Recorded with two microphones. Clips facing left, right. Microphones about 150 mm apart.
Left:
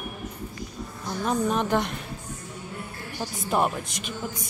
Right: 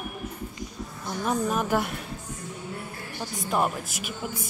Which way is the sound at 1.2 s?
5° right (ahead or behind).